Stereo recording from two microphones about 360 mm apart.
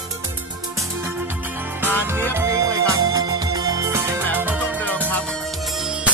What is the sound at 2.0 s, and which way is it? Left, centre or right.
Music, centre.